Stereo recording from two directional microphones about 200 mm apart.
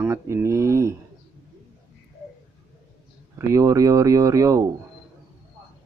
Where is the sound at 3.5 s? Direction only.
15° right (ahead or behind).